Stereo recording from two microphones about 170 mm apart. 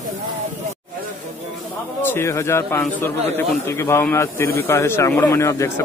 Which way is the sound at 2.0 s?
15° left (ahead or behind).